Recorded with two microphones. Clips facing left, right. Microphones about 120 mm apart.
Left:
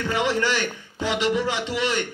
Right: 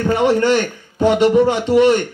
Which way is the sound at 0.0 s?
45° right (ahead or behind).